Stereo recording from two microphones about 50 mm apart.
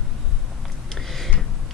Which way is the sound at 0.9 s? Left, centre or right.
Centre.